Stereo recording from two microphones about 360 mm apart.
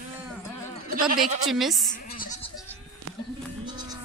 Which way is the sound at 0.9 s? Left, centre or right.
Right.